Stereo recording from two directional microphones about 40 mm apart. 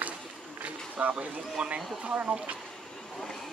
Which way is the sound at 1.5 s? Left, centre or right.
Right.